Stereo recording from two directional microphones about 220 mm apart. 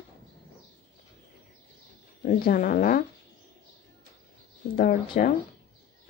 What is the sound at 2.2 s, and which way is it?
Speech, 40° left (ahead or behind).